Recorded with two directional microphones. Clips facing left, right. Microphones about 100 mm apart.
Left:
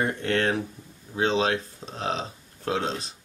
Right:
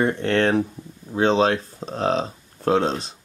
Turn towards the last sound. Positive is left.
turn(degrees=-40)  # may be behind; listen again after turning